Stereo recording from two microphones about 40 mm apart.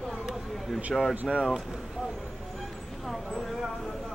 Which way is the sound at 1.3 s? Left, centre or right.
Centre.